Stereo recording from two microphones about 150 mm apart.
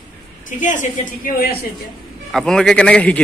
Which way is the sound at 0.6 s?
60° left (ahead or behind).